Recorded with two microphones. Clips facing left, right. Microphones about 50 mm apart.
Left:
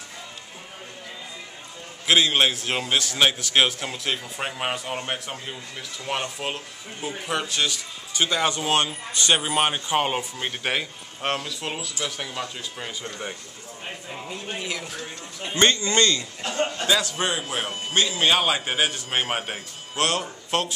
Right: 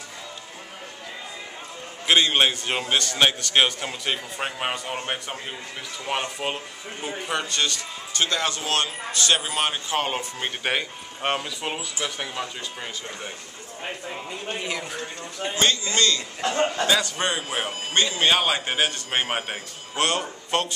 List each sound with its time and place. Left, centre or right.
2.0 s a man's voice: centre
10.4 s a man's voice: centre
14.1 s a man's voice: centre
15.5 s a man's voice: left
16.3 s a man's voice: right
16.8 s a man's voice: centre